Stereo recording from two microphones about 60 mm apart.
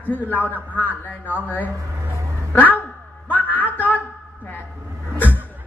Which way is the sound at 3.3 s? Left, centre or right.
Left.